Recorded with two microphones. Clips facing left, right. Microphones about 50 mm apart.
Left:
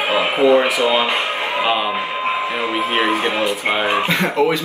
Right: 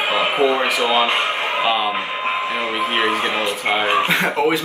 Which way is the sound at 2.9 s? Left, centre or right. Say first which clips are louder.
Left 1 dB; centre.